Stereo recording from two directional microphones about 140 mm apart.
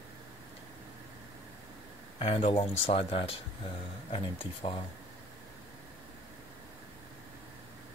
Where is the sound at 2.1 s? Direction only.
45° left (ahead or behind).